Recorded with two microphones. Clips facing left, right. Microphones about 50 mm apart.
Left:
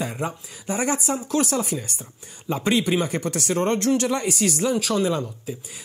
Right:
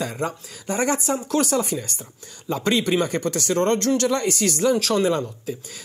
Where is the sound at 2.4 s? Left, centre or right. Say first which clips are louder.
Even; left.